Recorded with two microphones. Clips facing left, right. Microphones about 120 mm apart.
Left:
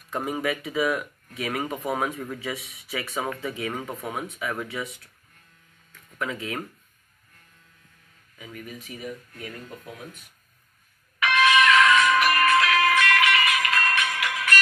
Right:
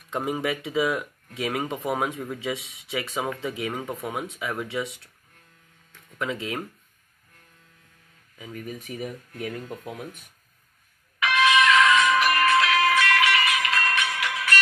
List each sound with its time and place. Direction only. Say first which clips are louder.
0.1 s speech: right 1 dB; 25° right (ahead or behind)
6.1 s speech: right 1 dB; 20° right (ahead or behind)
8.4 s speech: right 3 dB; 30° right (ahead or behind)
8.7 s speech: right 2 dB; 50° right (ahead or behind)
11.2 s music: even; 10° right (ahead or behind)
12.4 s music: even; 15° right (ahead or behind)